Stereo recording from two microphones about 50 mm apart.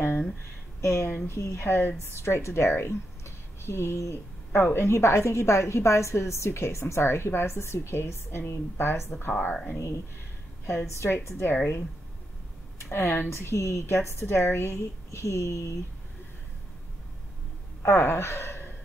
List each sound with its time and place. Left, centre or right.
0.7 s speech: left
1.0 s speech: left
1.3 s a woman's voice: left
2.1 s a woman's voice: left
9.3 s speech: left
10.7 s a woman's voice: left
12.9 s a woman's voice: left
17.8 s speech: left